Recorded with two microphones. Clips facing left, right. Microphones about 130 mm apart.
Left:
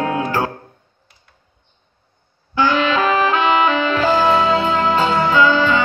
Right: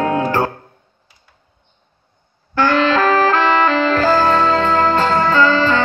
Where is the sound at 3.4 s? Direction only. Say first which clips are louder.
Right 1 dB; 10° left (ahead or behind).